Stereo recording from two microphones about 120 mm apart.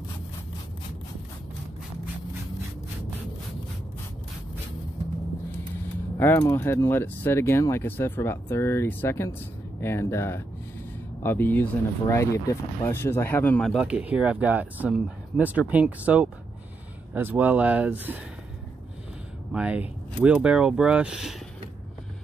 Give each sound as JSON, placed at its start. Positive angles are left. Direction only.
{"t": 6.1, "sound": "speech", "side_deg": 20}
{"t": 13.7, "sound": "speech", "side_deg": -5}
{"t": 19.5, "sound": "speech", "side_deg": -10}